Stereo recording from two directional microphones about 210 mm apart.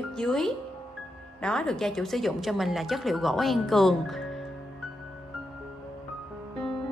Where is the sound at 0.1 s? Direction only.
5° left (ahead or behind).